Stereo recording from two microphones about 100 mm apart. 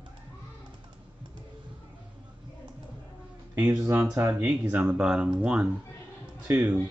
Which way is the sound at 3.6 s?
25° right (ahead or behind).